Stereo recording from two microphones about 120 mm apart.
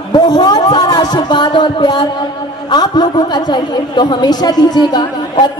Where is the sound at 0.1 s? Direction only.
35° left (ahead or behind).